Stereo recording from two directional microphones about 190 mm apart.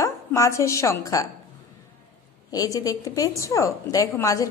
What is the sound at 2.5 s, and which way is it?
Speech, 20° left (ahead or behind).